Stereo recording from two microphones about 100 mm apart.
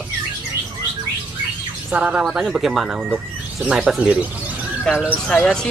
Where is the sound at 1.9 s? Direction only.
10° right (ahead or behind).